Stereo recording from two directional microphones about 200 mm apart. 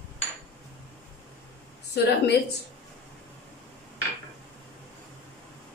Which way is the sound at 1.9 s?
55° left (ahead or behind).